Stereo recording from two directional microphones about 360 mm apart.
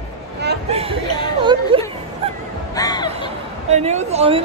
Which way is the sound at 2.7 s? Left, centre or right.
Centre.